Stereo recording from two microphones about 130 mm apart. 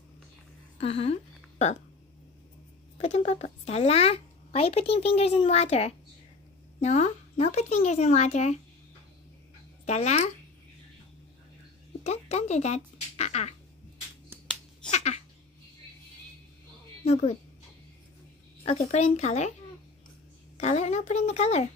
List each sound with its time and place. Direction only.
0.7 s speech: 50° left (ahead or behind)
3.0 s speech: 55° left (ahead or behind)
9.8 s speech: 60° left (ahead or behind)
12.0 s speech: 55° left (ahead or behind)
14.9 s a sound: 60° left (ahead or behind)
17.0 s speech: 55° left (ahead or behind)
18.6 s speech: 55° left (ahead or behind)
20.5 s speech: 60° left (ahead or behind)